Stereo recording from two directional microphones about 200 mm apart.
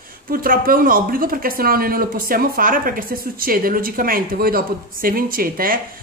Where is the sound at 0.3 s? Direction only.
45° right (ahead or behind).